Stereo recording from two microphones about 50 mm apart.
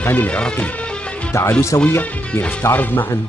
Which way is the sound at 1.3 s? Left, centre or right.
Left.